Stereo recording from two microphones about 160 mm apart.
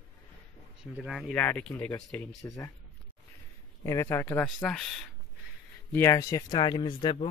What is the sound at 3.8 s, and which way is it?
Speech, 20° left (ahead or behind).